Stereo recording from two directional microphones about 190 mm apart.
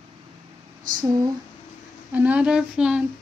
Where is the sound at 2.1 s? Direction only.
10° right (ahead or behind).